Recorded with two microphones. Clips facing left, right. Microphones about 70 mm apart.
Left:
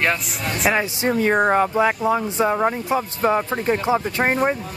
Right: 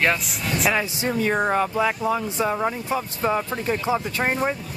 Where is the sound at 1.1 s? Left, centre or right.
Left.